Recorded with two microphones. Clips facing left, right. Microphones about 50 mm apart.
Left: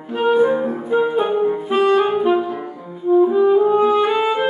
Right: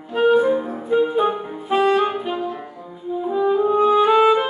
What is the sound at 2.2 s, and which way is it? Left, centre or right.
Saxophone, left.